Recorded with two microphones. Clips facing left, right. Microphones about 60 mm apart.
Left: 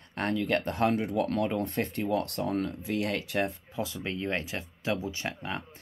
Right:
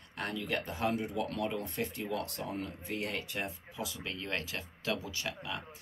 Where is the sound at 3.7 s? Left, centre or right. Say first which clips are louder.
Left 6 dB; left.